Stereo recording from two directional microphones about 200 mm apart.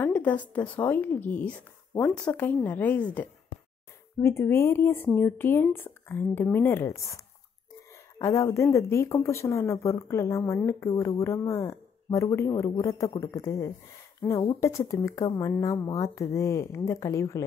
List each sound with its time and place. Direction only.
0.0 s speech: 10° left (ahead or behind)
8.2 s speech: 15° left (ahead or behind)